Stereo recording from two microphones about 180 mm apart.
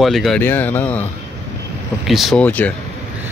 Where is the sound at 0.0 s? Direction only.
Centre (ahead or behind).